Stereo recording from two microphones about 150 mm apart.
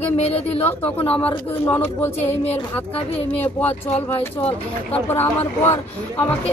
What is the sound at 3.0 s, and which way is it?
Speech, 40° left (ahead or behind).